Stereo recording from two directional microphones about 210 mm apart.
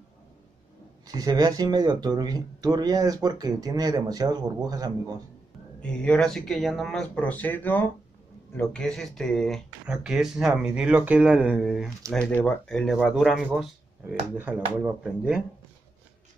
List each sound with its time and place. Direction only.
1.0 s speech: 15° right (ahead or behind)
5.8 s speech: 5° left (ahead or behind)